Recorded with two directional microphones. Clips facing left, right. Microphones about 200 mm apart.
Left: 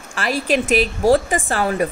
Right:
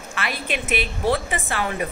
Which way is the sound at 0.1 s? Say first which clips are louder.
Left 8 dB; 35° left (ahead or behind).